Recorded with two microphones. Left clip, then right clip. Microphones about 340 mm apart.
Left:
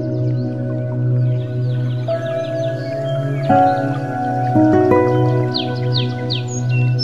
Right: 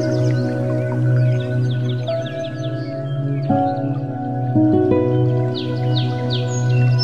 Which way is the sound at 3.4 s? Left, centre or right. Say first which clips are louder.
Left 6 dB; left.